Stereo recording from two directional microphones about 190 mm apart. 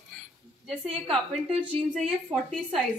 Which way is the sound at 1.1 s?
5° right (ahead or behind).